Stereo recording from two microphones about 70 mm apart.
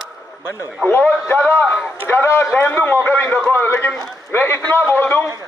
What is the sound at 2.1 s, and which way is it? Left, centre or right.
A man's voice, left.